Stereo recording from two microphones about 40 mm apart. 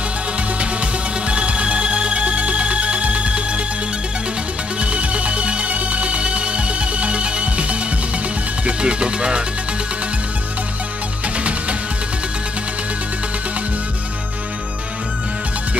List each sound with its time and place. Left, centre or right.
0.6 s music: right
4.7 s music: right
8.6 s speech: right